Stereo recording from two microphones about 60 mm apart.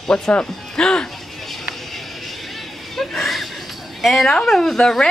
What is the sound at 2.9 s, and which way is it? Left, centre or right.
Chuckle, centre.